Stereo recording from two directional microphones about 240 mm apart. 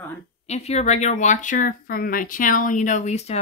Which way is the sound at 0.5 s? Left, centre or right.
Left.